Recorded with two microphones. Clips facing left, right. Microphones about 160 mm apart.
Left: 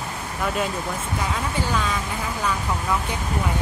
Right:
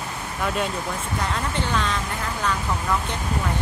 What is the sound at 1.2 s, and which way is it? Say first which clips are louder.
Speech: even; 5° left (ahead or behind).